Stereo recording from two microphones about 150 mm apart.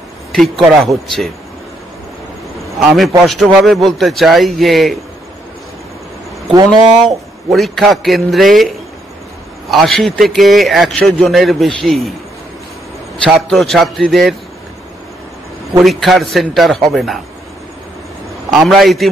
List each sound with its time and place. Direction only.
0.3 s a man's voice: centre (ahead or behind)
3.3 s a man's voice: centre (ahead or behind)
6.5 s speech: 25° right (ahead or behind)
7.5 s a man's voice: centre (ahead or behind)
9.7 s a man's voice: centre (ahead or behind)
13.2 s a man's voice: centre (ahead or behind)
15.8 s a man's voice: centre (ahead or behind)
18.5 s a man's voice: centre (ahead or behind)